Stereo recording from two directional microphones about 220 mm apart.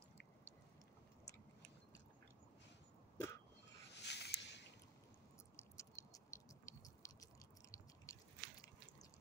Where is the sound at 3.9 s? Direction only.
50° left (ahead or behind).